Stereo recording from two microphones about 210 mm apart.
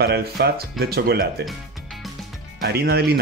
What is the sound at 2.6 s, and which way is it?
Speech, 50° right (ahead or behind).